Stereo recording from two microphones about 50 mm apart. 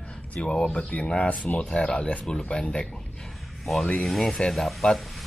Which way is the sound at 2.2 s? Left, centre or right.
Centre.